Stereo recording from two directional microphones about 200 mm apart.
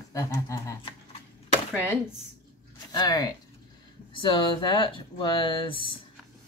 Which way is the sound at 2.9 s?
20° left (ahead or behind).